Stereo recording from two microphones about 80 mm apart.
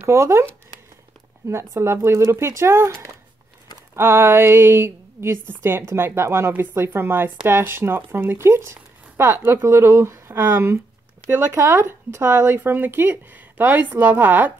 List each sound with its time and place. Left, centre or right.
0.1 s a woman's voice: right
1.5 s a woman's voice: right